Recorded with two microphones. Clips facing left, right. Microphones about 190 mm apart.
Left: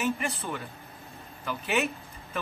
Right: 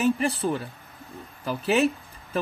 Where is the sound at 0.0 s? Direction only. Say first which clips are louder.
Right 7 dB; 35° right (ahead or behind).